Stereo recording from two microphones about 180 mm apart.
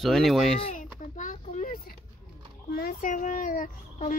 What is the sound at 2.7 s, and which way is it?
Speech, 55° left (ahead or behind).